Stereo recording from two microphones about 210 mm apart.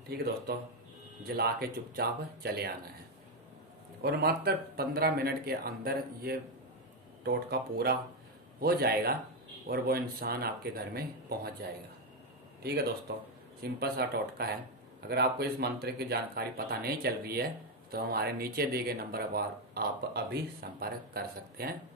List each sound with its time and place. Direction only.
0.1 s speech: 50° right (ahead or behind)
4.0 s speech: 50° right (ahead or behind)
12.6 s speech: 50° right (ahead or behind)